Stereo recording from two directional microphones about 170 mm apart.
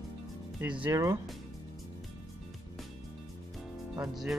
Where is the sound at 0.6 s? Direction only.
5° right (ahead or behind).